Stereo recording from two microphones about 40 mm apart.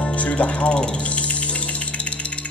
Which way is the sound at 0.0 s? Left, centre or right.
Left.